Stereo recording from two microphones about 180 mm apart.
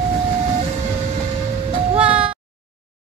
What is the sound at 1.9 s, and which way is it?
Music, 5° right (ahead or behind).